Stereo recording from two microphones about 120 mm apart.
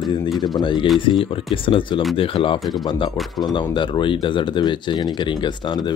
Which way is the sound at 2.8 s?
35° left (ahead or behind).